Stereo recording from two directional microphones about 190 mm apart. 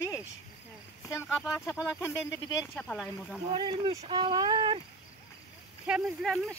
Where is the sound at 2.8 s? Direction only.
5° left (ahead or behind).